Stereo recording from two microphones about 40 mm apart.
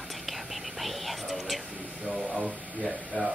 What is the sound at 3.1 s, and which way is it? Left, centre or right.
Speech, left.